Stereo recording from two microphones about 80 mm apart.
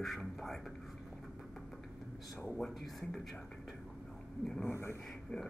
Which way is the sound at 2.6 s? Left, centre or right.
Centre.